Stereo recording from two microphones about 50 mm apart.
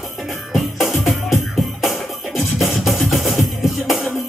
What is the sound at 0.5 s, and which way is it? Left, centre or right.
Music, centre.